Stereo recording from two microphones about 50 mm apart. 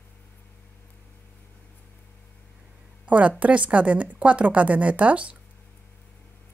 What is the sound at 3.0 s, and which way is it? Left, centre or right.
A woman's voice, right.